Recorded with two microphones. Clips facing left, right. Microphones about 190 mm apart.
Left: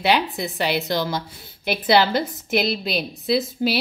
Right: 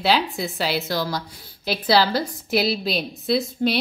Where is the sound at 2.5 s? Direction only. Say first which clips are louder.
Even; centre (ahead or behind).